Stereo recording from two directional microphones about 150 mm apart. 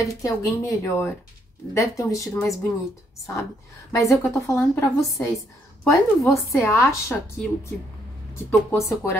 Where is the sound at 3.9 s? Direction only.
20° left (ahead or behind).